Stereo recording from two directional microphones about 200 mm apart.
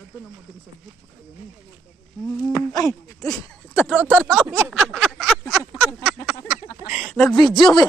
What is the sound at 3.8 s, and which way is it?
Speech, 5° right (ahead or behind).